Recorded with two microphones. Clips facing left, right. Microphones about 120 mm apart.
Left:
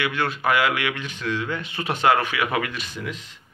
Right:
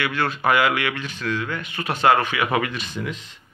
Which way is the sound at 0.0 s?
15° left (ahead or behind).